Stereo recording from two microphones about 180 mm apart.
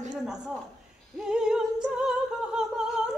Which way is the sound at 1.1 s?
5° right (ahead or behind).